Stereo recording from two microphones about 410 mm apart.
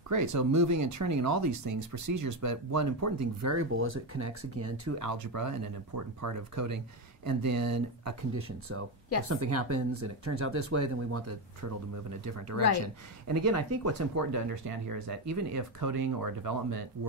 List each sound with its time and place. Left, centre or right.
0.1 s speech: right
5.0 s speech: right
12.4 s speech: right